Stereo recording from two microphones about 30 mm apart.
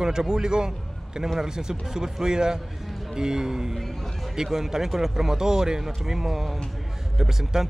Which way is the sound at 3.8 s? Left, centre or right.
Centre.